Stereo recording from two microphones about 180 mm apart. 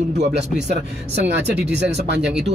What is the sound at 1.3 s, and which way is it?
Speech, 70° right (ahead or behind).